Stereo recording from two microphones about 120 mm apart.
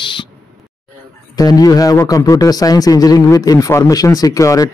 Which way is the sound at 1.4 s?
30° left (ahead or behind).